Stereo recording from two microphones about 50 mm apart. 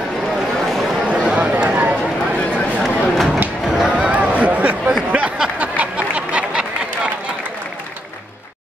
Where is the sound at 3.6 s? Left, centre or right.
Centre; by 4.9 s right.